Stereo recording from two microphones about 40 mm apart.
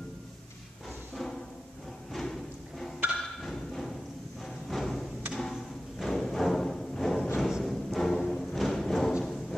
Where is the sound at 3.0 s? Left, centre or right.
Right.